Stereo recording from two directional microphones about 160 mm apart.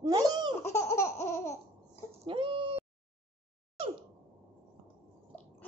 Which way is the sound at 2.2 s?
35° right (ahead or behind).